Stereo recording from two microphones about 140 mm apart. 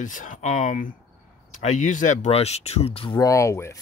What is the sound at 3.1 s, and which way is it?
Speech, 20° left (ahead or behind).